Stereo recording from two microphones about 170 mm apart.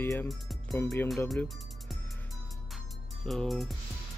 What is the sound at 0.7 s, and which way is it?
Speech, 15° left (ahead or behind).